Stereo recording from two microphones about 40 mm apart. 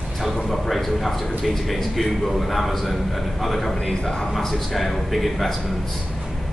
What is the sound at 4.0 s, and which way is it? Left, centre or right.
Speech, left.